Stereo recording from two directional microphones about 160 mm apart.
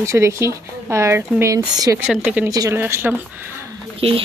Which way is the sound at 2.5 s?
20° right (ahead or behind).